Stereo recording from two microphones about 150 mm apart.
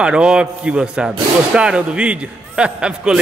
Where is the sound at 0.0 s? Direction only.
5° right (ahead or behind).